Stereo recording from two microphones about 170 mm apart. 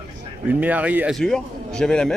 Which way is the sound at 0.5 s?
10° right (ahead or behind).